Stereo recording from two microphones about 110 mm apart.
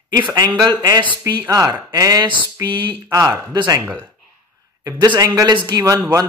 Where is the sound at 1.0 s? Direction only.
45° right (ahead or behind).